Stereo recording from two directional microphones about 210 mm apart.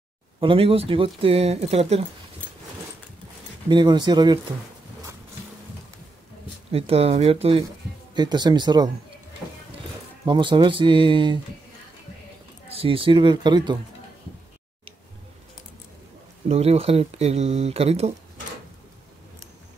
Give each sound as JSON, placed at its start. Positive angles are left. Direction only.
{"t": 0.4, "sound": "speech", "side_deg": -25}
{"t": 3.6, "sound": "speech", "side_deg": -20}
{"t": 6.7, "sound": "speech", "side_deg": -30}
{"t": 10.2, "sound": "speech", "side_deg": -20}
{"t": 12.6, "sound": "speech", "side_deg": -25}
{"t": 16.4, "sound": "speech", "side_deg": -30}